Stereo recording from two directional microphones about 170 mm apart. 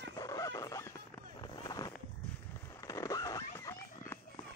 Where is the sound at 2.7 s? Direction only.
20° left (ahead or behind).